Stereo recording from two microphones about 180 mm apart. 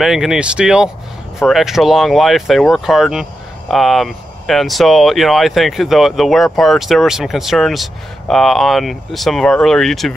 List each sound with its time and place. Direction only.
0.0 s speech: centre (ahead or behind)